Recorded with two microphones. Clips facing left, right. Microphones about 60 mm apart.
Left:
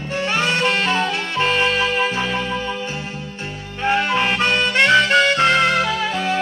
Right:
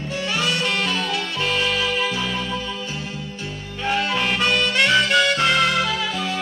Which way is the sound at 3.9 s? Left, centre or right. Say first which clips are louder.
Left 4 dB; left.